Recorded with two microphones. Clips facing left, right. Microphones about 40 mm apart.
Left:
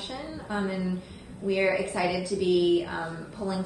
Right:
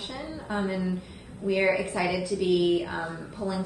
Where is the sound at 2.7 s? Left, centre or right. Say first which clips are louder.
Left 1 dB; right.